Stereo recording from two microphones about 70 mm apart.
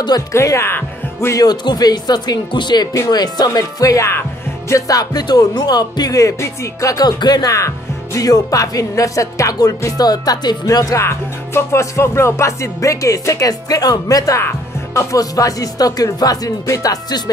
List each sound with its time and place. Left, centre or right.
0.3 s music: left
1.3 s speech: left
3.1 s speech: left
7.5 s music: left
9.9 s speech: left
11.0 s music: left
15.0 s speech: left